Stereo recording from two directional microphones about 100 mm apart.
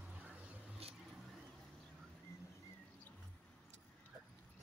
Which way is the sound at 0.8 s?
90° right.